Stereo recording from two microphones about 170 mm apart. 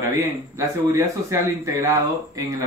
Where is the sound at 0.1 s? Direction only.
15° right (ahead or behind).